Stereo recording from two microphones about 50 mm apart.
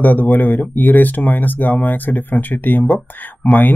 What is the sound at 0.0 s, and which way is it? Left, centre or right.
Speech, left.